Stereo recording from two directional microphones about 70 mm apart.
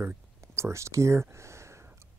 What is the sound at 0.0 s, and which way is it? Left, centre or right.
Speech, right.